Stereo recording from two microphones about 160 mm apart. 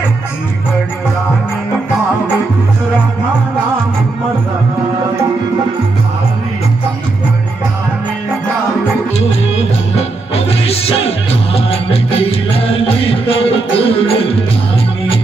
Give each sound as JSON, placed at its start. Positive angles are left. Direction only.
{"t": 9.6, "sound": "music", "side_deg": 40}